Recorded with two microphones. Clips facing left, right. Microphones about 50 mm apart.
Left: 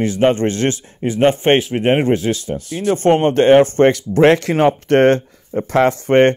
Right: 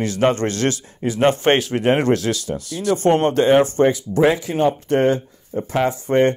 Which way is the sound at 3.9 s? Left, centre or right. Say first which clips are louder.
Left 5 dB; left.